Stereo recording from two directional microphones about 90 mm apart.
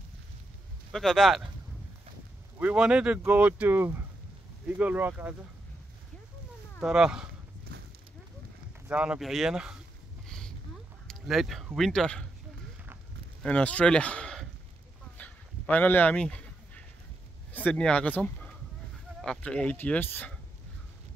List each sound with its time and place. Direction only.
0.9 s speech: 5° left (ahead or behind)
2.6 s speech: 10° right (ahead or behind)
6.8 s speech: 5° right (ahead or behind)
8.9 s speech: 10° right (ahead or behind)
9.2 s speech: centre (ahead or behind)
10.2 s a sound: 5° left (ahead or behind)
11.2 s speech: centre (ahead or behind)
13.4 s speech: 15° left (ahead or behind)
15.1 s a sound: 15° left (ahead or behind)
17.5 s speech: 15° left (ahead or behind)